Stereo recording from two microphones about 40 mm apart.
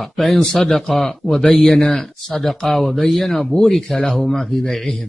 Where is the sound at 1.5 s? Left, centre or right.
Left.